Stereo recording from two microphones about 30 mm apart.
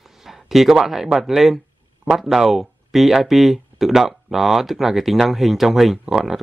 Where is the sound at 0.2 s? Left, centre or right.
Centre.